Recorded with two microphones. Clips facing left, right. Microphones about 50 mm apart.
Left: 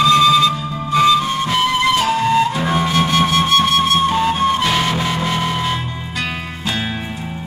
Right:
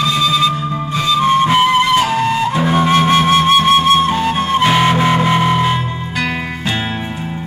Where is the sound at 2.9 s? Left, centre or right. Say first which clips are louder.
Right 6 dB; right.